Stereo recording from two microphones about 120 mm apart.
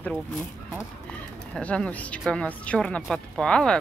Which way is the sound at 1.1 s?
10° left (ahead or behind).